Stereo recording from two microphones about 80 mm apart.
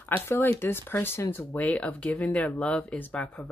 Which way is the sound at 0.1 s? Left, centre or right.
Left.